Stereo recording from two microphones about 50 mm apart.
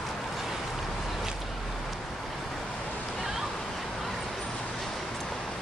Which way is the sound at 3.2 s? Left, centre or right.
Centre.